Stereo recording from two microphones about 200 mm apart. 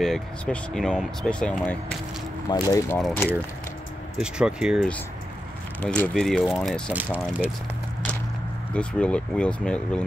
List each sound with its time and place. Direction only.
0.0 s speech: centre (ahead or behind)
2.5 s speech: 15° left (ahead or behind)
4.2 s speech: 5° right (ahead or behind)
5.8 s speech: 5° left (ahead or behind)
8.7 s speech: 5° left (ahead or behind)